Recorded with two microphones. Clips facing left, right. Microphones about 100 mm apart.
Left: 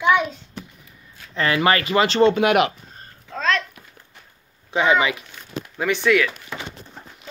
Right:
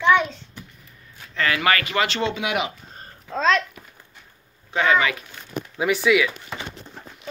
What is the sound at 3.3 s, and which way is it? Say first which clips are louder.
Speech: right 3 dB; 20° right (ahead or behind).